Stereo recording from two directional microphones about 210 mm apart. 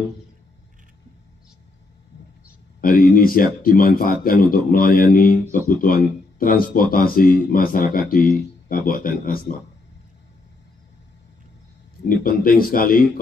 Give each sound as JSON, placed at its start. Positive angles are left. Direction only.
{"t": 2.8, "sound": "speech", "side_deg": 40}
{"t": 12.2, "sound": "speech", "side_deg": 40}